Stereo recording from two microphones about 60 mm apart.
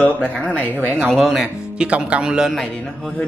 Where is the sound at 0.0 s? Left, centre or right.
Left.